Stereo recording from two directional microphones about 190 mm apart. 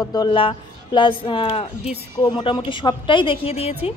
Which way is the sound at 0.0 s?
20° left (ahead or behind).